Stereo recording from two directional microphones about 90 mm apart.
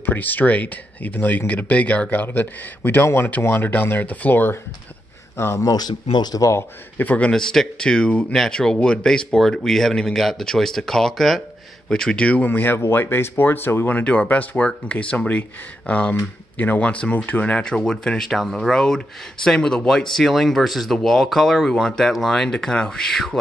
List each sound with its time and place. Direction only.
0.0 s speech: 20° left (ahead or behind)
5.7 s speech: 50° left (ahead or behind)
7.0 s speech: 15° left (ahead or behind)